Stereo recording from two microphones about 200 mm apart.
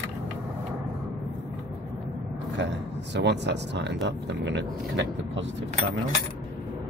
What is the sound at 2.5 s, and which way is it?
Speech, 65° right (ahead or behind).